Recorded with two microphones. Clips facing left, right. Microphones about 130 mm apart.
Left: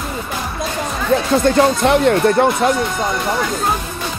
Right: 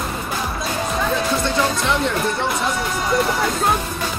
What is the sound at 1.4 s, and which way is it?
Speech, 50° left (ahead or behind).